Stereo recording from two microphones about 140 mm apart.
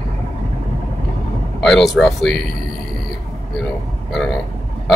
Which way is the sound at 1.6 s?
5° left (ahead or behind).